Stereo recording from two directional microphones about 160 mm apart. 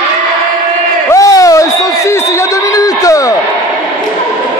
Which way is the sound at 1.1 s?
20° left (ahead or behind).